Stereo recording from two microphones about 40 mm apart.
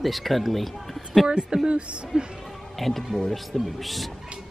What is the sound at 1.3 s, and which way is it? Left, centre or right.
Speech, right.